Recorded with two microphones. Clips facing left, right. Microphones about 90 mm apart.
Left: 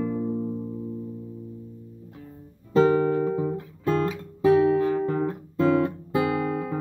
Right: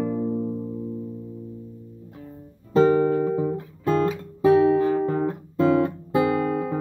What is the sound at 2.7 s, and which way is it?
Music, 20° right (ahead or behind).